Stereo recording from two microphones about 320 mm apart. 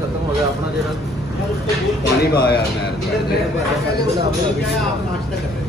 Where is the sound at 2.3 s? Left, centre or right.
Left.